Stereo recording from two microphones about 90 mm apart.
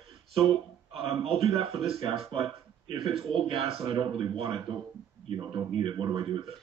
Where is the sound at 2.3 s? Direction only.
75° right (ahead or behind).